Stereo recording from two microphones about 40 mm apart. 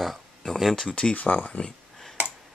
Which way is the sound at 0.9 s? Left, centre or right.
Left.